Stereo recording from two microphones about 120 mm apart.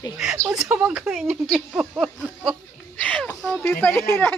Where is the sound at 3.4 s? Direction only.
Centre (ahead or behind).